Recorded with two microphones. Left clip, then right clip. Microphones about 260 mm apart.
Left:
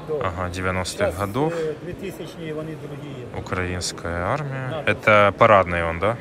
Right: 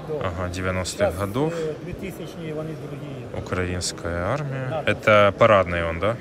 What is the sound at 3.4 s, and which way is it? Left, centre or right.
Speech, centre.